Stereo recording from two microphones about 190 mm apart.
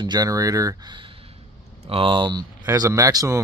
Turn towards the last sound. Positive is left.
turn(degrees=-20)  # may be behind; listen again after turning